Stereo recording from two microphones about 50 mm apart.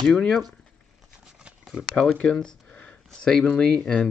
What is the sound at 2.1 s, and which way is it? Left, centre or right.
Speech, left.